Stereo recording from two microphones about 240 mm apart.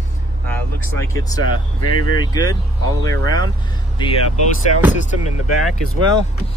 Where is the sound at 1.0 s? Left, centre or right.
Centre.